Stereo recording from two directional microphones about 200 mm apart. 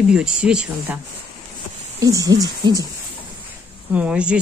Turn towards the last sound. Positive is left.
turn(degrees=-5)  # may be behind; listen again after turning